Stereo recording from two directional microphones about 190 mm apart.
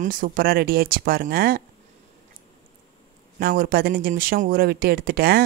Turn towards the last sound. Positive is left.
turn(degrees=-55)  # may be behind; listen again after turning